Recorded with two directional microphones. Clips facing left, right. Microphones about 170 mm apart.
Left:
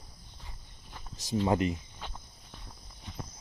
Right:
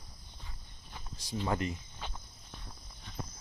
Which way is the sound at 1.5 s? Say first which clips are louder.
Left 5 dB; 20° left (ahead or behind).